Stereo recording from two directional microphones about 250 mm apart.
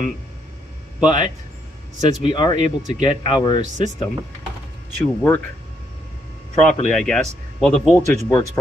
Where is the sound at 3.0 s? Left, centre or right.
Centre.